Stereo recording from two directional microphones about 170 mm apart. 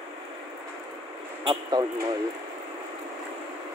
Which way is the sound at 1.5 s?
25° right (ahead or behind).